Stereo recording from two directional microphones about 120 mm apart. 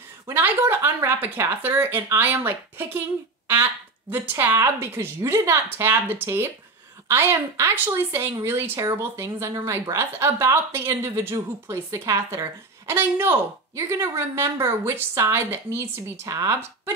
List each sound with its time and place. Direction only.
0.3 s speech: 20° right (ahead or behind)
4.1 s speech: 20° right (ahead or behind)